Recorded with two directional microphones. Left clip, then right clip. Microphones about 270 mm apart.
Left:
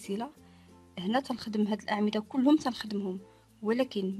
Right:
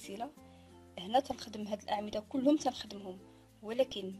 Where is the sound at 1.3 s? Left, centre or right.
Left.